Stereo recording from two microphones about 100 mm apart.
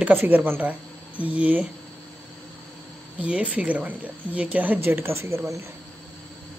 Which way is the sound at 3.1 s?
15° right (ahead or behind).